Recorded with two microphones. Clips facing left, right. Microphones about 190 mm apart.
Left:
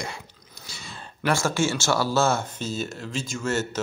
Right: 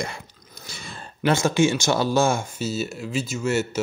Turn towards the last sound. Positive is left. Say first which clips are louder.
# right 3 dB
turn(degrees=-10)  # may be behind; listen again after turning